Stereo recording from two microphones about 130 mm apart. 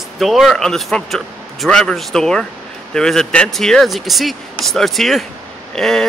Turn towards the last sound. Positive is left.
turn(degrees=5)  # may be behind; listen again after turning